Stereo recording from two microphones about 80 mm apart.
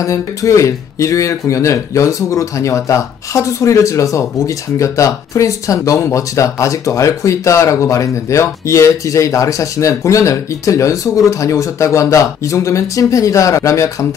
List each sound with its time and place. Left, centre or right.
0.0 s speech: left